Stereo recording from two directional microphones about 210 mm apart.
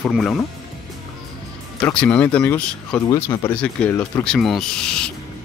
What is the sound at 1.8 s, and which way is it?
Speech, 5° left (ahead or behind).